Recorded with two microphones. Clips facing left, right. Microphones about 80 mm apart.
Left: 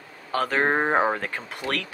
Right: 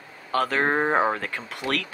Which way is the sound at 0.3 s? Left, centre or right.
Centre.